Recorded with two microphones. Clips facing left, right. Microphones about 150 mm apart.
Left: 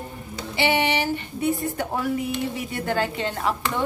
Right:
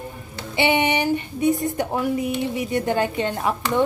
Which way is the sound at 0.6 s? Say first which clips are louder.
Right 2 dB; 20° right (ahead or behind).